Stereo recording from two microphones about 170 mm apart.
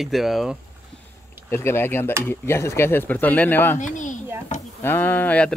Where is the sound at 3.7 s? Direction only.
45° left (ahead or behind).